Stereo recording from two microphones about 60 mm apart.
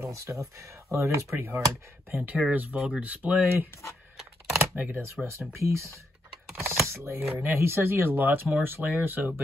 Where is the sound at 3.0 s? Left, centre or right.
Right.